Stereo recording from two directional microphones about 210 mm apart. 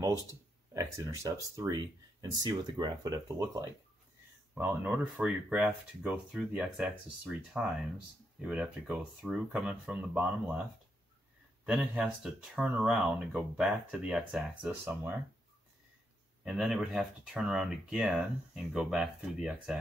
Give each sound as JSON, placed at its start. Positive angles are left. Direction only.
{"t": 0.9, "sound": "speech", "side_deg": -15}
{"t": 16.4, "sound": "speech", "side_deg": 0}